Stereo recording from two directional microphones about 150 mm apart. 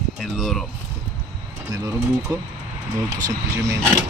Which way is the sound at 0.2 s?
Centre (ahead or behind).